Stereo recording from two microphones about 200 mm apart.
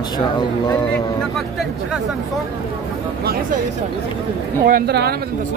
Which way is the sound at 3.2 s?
50° right (ahead or behind).